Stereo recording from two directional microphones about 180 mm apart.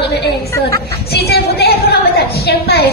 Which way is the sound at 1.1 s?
60° left (ahead or behind).